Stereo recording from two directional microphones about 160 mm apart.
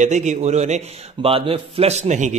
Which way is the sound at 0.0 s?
50° right (ahead or behind).